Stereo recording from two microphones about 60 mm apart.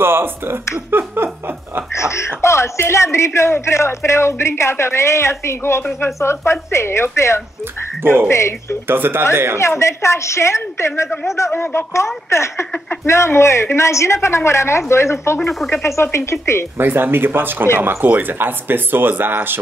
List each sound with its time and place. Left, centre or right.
0.0 s speech: right
2.0 s speech: left
8.0 s speech: right
8.3 s speech: left
8.8 s speech: right
9.6 s speech: left
16.7 s speech: right